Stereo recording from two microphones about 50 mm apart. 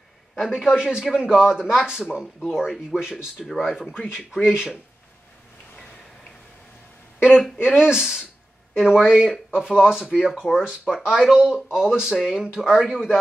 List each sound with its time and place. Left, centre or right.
0.7 s speech: centre
3.6 s speech: centre
7.2 s a sound: centre
7.6 s speech: centre
12.9 s a man's voice: centre